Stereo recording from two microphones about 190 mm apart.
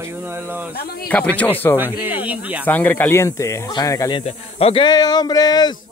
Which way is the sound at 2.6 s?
10° left (ahead or behind).